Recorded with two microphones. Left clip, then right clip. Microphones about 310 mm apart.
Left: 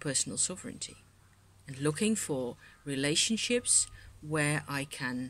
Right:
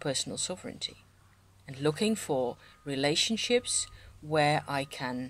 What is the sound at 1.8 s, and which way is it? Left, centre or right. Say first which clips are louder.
Speech: right 2 dB; centre.